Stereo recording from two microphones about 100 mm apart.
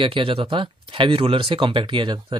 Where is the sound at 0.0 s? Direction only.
60° right (ahead or behind).